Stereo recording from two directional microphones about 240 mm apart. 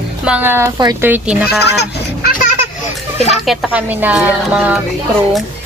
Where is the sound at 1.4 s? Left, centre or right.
Left.